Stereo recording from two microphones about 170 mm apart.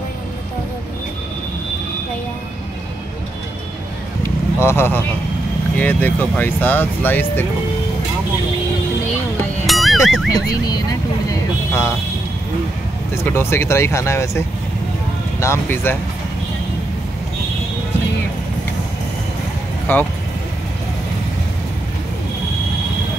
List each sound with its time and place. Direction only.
4.6 s speech: 15° left (ahead or behind)
9.7 s music: centre (ahead or behind)
10.3 s speech: 20° left (ahead or behind)
13.1 s speech: 15° left (ahead or behind)
15.4 s speech: 15° left (ahead or behind)
19.9 s speech: 10° left (ahead or behind)